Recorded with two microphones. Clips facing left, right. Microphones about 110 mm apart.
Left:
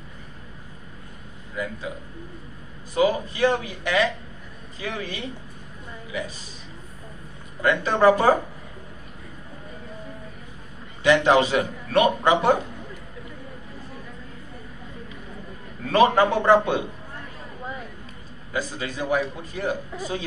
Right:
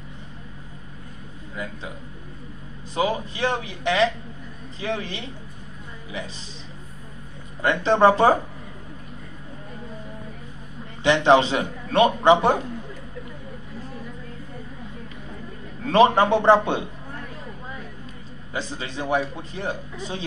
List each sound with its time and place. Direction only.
1.6 s a man's voice: 25° right (ahead or behind)
2.9 s a man's voice: 25° right (ahead or behind)
7.6 s a man's voice: 25° right (ahead or behind)
11.0 s a man's voice: 25° right (ahead or behind)
15.9 s a man's voice: 25° right (ahead or behind)
18.5 s a man's voice: 25° right (ahead or behind)